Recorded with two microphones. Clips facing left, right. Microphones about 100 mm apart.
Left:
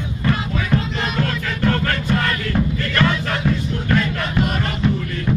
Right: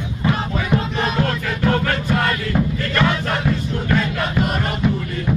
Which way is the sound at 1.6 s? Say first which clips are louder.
Right 1 dB; 5° right (ahead or behind).